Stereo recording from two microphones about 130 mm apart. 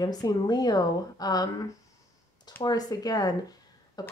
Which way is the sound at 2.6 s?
30° left (ahead or behind).